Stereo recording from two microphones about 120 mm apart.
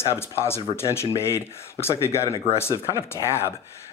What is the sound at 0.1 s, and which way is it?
Speech, 20° left (ahead or behind).